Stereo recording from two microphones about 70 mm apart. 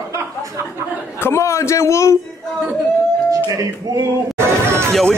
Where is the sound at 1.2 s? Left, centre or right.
Left.